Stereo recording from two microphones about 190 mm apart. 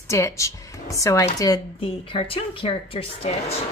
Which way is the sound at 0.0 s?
15° left (ahead or behind).